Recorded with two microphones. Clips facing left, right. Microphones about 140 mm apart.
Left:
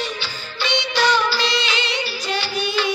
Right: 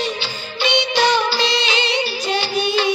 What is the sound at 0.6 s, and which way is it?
Music of bollywood, 20° right (ahead or behind).